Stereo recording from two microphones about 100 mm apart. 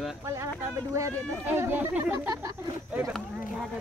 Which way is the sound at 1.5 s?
20° right (ahead or behind).